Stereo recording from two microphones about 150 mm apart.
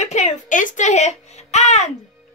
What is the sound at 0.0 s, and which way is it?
A child's voice, 50° left (ahead or behind).